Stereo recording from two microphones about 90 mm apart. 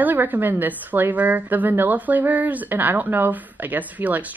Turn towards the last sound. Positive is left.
turn(degrees=-20)  # may be behind; listen again after turning